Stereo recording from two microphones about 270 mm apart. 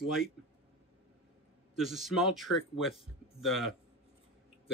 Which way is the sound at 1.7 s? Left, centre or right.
Centre.